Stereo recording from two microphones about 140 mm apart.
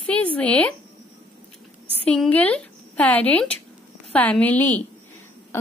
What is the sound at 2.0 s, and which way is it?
A woman's voice, 10° left (ahead or behind).